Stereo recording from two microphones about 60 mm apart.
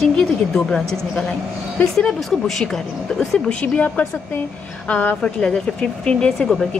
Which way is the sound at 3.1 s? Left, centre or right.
Left.